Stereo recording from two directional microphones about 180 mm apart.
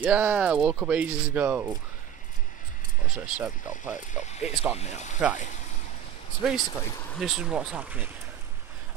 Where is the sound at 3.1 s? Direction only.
5° right (ahead or behind).